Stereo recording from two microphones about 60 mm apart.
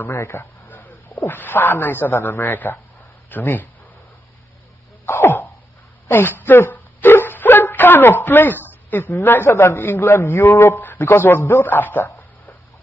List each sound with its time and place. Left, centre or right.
0.1 s a man's voice: left
0.7 s a man's voice: left
5.0 s throat clearing: left
6.0 s a woman's voice: left
6.7 s dog: left
9.2 s a man's voice: left
9.5 s a man's voice: left
10.1 s a man's voice: left
10.9 s a man's voice: left
11.7 s a sound: left